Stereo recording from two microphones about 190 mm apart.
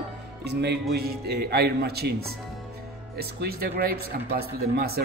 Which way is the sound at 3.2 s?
55° right (ahead or behind).